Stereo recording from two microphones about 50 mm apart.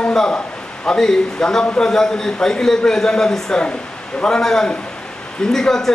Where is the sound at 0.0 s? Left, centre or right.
Centre.